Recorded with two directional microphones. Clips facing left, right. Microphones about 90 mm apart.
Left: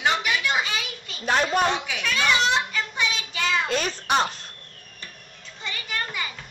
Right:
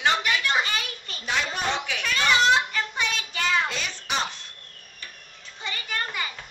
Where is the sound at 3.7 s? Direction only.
50° left (ahead or behind).